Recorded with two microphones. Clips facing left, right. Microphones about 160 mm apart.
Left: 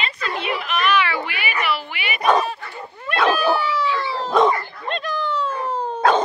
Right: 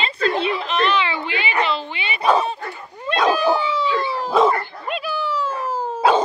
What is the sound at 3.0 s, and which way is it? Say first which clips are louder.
Dog: right 1 dB; 15° right (ahead or behind).